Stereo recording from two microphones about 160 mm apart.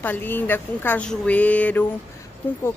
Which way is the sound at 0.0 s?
10° left (ahead or behind).